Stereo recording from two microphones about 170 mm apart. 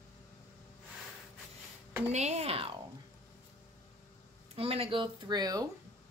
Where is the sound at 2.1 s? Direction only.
40° right (ahead or behind).